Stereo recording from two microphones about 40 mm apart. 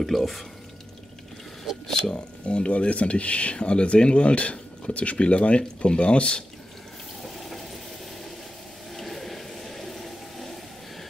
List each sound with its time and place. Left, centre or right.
0.0 s speech: centre
2.1 s speech: left
7.2 s water: centre
8.9 s a sound: centre